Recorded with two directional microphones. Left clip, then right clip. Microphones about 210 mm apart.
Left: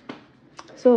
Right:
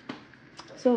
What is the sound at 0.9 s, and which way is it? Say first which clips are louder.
Speech: left 8 dB; 30° left (ahead or behind).